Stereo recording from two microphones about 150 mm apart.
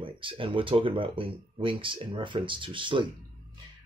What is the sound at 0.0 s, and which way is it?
Speech, 35° right (ahead or behind).